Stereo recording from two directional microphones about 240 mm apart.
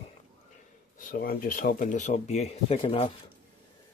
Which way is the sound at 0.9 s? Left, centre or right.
Left.